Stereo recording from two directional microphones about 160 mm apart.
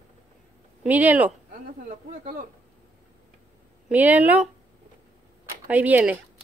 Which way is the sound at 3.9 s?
10° right (ahead or behind).